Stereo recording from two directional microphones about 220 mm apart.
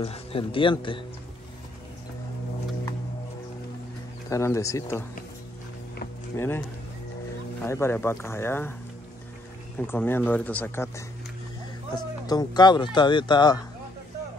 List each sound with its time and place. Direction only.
0.0 s speech: 25° left (ahead or behind)
4.3 s speech: 15° left (ahead or behind)
6.3 s speech: 10° left (ahead or behind)
7.6 s speech: 10° left (ahead or behind)
9.8 s speech: 10° left (ahead or behind)